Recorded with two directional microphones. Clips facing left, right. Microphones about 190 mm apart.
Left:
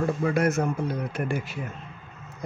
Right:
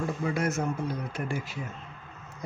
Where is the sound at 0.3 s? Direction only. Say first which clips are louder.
Left 4 dB; 60° left (ahead or behind).